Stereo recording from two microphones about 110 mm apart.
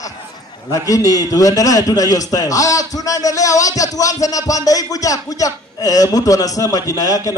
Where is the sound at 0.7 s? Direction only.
30° left (ahead or behind).